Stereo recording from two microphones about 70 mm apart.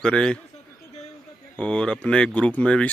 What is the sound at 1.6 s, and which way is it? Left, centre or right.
Speech, centre.